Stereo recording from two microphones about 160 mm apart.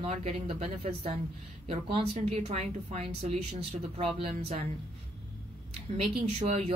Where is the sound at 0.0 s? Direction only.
45° right (ahead or behind).